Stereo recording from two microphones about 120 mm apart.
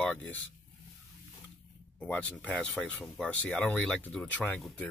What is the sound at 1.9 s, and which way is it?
Speech, 10° left (ahead or behind).